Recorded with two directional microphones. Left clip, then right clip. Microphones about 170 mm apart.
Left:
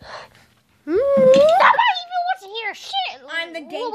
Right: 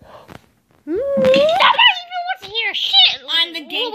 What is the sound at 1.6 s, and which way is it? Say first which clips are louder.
Dog: right 2 dB; 20° left (ahead or behind).